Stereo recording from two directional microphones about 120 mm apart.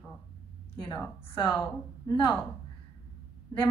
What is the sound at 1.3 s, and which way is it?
Speech, 45° left (ahead or behind).